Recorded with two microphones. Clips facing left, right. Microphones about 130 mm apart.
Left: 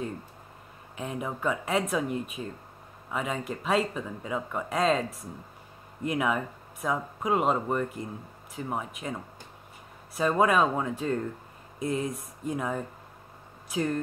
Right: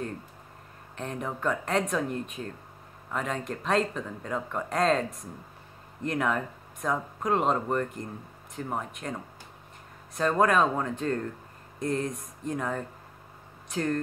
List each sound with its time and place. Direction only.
0.9 s speech: 5° left (ahead or behind)